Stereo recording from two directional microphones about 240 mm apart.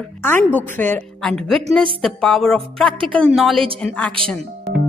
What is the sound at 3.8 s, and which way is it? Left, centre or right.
Speech, centre.